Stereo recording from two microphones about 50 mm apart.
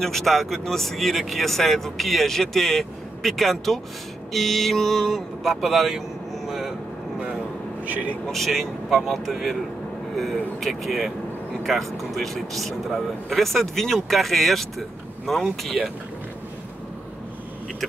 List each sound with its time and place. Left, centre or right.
0.0 s speech: centre
7.8 s speech: right
8.3 s speech: centre
10.6 s speech: centre